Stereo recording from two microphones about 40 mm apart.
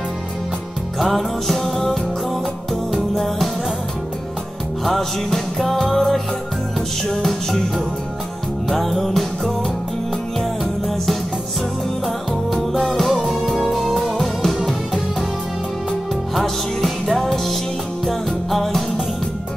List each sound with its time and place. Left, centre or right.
0.9 s music: centre
4.8 s music: centre
10.6 s music: centre
12.4 s music: centre
16.3 s music: centre